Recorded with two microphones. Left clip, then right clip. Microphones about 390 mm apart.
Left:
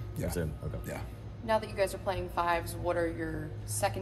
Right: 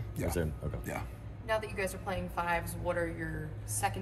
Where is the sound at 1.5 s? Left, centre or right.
Left.